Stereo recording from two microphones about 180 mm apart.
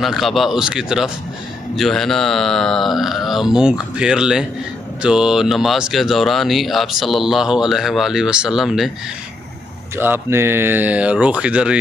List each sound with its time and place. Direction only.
0.0 s speech: centre (ahead or behind)
9.9 s speech: 10° right (ahead or behind)